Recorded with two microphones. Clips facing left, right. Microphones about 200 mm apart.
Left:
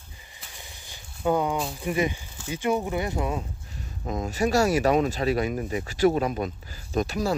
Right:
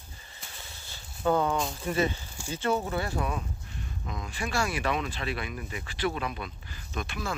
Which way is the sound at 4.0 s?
45° left (ahead or behind).